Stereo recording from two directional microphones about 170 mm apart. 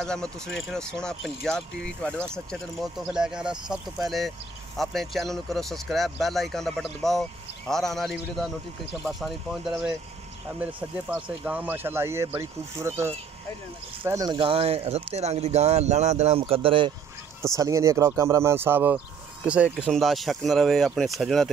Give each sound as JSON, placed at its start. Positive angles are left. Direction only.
{"t": 0.0, "sound": "speech", "side_deg": 5}
{"t": 14.0, "sound": "speech", "side_deg": -20}
{"t": 17.6, "sound": "speech", "side_deg": -20}